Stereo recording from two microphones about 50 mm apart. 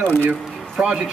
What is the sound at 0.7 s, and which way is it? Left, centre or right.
Speech, centre.